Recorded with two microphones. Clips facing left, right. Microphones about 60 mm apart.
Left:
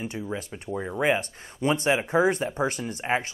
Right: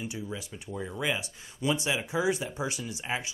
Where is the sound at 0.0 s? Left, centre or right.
Left.